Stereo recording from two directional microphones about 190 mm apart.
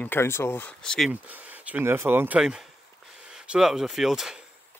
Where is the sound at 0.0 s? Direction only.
10° left (ahead or behind).